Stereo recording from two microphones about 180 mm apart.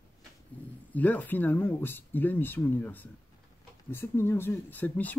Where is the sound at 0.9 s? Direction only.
10° left (ahead or behind).